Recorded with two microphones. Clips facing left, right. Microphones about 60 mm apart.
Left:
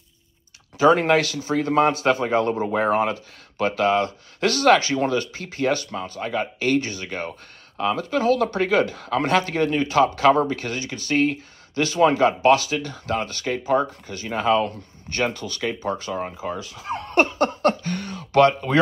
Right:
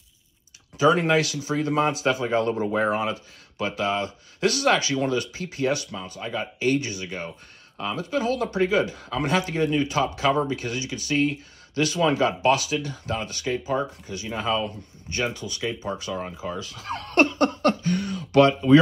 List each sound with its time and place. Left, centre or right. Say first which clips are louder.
0.7 s speech: left 3 dB; left
2.7 s speech: left 3 dB; left
16.8 s speech: left 1 dB; centre; by 18.8 s left